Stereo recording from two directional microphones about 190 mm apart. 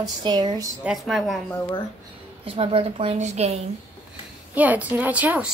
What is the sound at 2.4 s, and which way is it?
A woman's voice, 30° right (ahead or behind).